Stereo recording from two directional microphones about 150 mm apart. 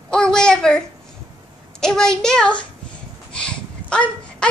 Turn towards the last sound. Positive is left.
turn(degrees=5)  # may be behind; listen again after turning